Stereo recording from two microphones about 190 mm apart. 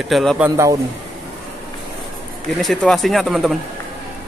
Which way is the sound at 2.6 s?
Centre (ahead or behind).